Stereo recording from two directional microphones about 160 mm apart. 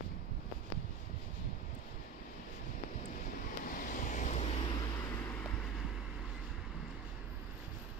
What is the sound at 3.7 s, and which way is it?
Vehicle, 60° left (ahead or behind).